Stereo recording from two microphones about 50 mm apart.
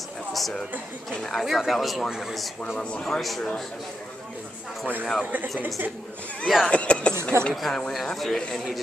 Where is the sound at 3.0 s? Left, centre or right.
Centre.